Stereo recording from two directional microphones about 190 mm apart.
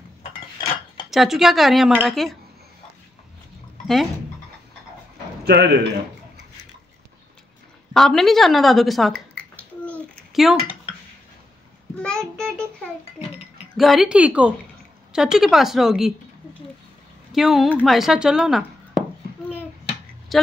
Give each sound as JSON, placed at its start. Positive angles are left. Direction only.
{"t": 1.1, "sound": "speech", "side_deg": 0}
{"t": 3.8, "sound": "speech", "side_deg": 0}
{"t": 5.4, "sound": "a man's voice", "side_deg": -55}
{"t": 7.9, "sound": "speech", "side_deg": 0}
{"t": 9.8, "sound": "a sound", "side_deg": 5}
{"t": 12.0, "sound": "child singing", "side_deg": 5}
{"t": 13.7, "sound": "speech", "side_deg": 0}
{"t": 17.3, "sound": "speech", "side_deg": 0}